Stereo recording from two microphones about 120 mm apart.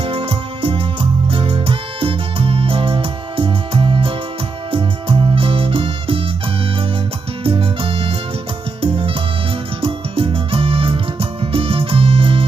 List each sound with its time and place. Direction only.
0.0 s music: 50° right (ahead or behind)
7.4 s music: 50° right (ahead or behind)